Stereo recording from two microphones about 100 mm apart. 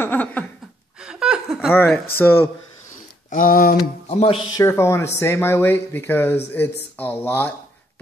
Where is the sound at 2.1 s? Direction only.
20° left (ahead or behind).